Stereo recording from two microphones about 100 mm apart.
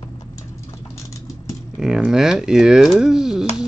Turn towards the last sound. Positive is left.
turn(degrees=-5)  # may be behind; listen again after turning